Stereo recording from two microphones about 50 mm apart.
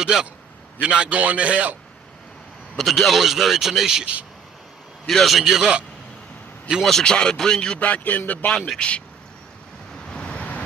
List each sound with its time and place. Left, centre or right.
0.0 s a man's voice: centre
2.8 s speech: centre
4.0 s a man's voice: right
5.0 s speech: centre
6.8 s speech: centre
7.8 s a man's voice: left
8.7 s a man's voice: left
10.0 s vehicle: centre